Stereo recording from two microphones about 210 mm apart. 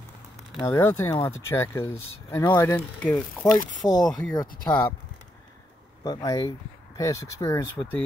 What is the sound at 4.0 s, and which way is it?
Speech, centre (ahead or behind).